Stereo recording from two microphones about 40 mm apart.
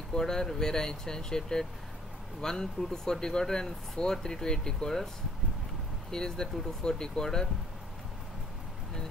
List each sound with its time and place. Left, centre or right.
0.1 s speech: centre
6.1 s speech: centre